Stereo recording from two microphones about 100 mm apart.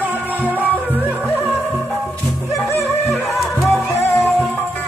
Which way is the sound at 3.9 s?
25° left (ahead or behind).